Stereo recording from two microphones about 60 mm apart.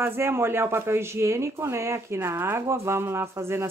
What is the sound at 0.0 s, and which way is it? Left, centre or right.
Speech, right.